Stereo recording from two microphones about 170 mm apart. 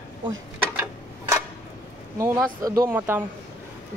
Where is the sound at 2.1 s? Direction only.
20° right (ahead or behind).